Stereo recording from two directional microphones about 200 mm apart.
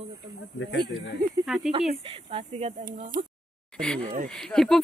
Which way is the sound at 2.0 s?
30° right (ahead or behind).